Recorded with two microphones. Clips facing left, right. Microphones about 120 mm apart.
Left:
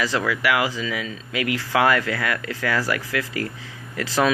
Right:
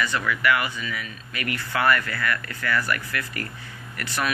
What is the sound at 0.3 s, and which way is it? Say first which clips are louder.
Speech: left 2 dB; 90° left.